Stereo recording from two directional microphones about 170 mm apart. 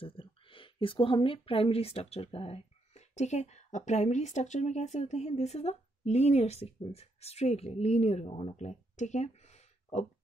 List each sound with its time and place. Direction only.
0.0 s speech: 30° left (ahead or behind)